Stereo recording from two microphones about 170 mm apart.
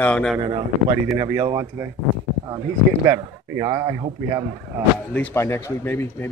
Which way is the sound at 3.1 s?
20° right (ahead or behind).